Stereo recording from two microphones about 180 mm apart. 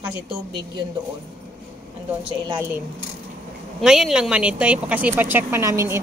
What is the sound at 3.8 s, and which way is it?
Speech, centre (ahead or behind).